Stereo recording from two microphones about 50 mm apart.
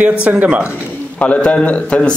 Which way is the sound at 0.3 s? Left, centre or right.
Right.